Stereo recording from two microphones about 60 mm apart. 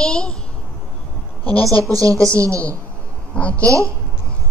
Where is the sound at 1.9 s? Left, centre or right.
Right.